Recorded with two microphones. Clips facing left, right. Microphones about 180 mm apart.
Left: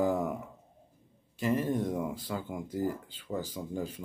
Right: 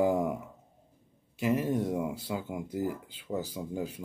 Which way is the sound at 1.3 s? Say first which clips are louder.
Right 1 dB; 10° right (ahead or behind).